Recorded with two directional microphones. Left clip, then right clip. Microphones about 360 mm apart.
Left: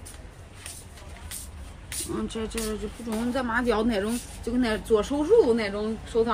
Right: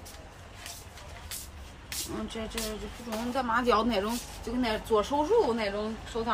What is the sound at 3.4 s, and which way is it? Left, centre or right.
Speech, right.